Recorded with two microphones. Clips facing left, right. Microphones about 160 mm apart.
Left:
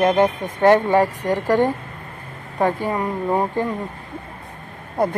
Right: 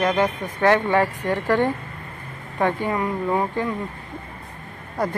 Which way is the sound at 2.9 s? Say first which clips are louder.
Left 1 dB; 25° left (ahead or behind).